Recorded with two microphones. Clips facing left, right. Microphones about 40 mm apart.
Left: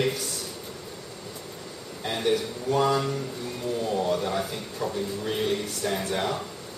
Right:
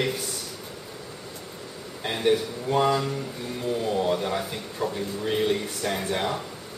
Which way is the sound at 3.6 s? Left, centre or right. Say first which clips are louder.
Right 2 dB; centre.